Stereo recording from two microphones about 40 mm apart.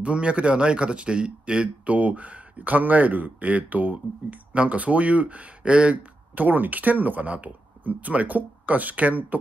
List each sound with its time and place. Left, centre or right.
0.0 s a man's voice: right
6.3 s a man's voice: right